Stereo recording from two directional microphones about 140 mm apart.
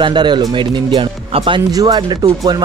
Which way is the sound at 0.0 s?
30° right (ahead or behind).